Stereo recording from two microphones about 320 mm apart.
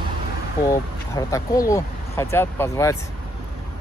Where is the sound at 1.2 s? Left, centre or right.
Centre.